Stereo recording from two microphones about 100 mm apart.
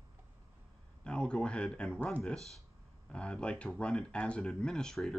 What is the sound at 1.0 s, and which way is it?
Speech, 10° left (ahead or behind).